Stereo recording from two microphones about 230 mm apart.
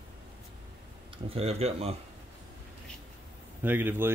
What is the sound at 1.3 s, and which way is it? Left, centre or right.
Speech, right.